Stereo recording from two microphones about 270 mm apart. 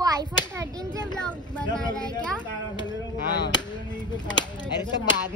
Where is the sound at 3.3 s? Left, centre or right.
Centre.